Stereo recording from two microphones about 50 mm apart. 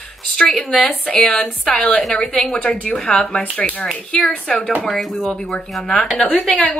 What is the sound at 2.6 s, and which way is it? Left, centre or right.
Speech, centre.